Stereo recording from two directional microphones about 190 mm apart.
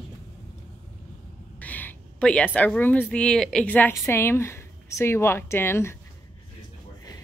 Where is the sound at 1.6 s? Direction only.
10° left (ahead or behind).